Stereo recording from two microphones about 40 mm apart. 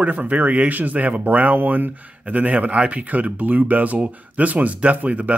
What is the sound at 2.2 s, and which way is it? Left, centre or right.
Speech, right.